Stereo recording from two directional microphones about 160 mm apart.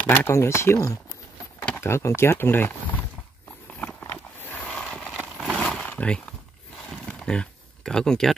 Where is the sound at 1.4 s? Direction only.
15° left (ahead or behind).